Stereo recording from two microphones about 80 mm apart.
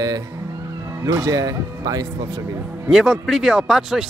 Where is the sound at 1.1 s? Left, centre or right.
Right.